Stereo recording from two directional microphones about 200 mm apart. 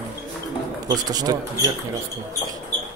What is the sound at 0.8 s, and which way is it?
Speech, 20° right (ahead or behind).